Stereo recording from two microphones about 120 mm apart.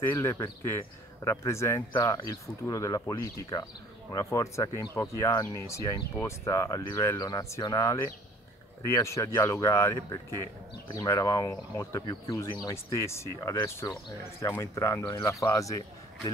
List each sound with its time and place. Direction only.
0.0 s speech: 20° left (ahead or behind)